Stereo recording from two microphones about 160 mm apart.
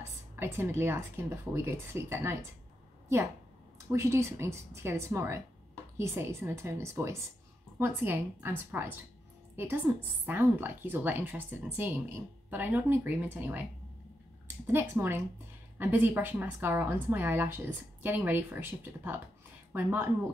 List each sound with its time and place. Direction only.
0.4 s speech: 15° right (ahead or behind)
3.9 s speech: 15° right (ahead or behind)
9.9 s speech: 15° right (ahead or behind)
14.7 s speech: 15° right (ahead or behind)